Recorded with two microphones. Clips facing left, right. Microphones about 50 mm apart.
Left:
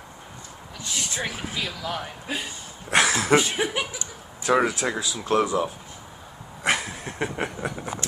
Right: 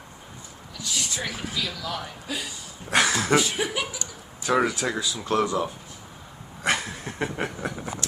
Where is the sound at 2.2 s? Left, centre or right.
Left.